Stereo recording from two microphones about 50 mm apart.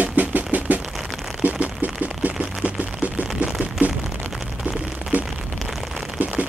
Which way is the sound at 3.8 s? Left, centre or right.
Right.